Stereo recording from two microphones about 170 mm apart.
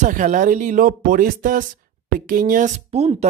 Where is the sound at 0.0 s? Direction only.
50° right (ahead or behind).